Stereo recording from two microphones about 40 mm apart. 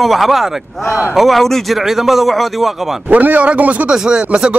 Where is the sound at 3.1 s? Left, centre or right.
Right.